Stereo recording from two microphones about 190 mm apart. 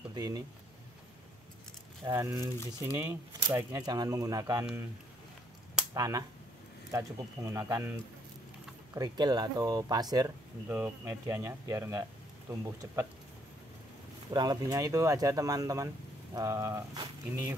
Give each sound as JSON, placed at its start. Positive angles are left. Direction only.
{"t": 0.1, "sound": "speech", "side_deg": -20}
{"t": 2.0, "sound": "speech", "side_deg": -15}
{"t": 5.9, "sound": "speech", "side_deg": -20}
{"t": 8.9, "sound": "speech", "side_deg": -20}
{"t": 14.3, "sound": "speech", "side_deg": -20}